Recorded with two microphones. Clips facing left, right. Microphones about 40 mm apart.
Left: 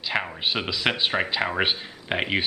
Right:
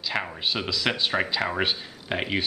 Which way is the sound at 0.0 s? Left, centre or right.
Centre.